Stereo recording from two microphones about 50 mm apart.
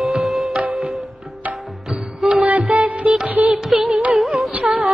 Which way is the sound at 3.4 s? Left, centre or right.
Right.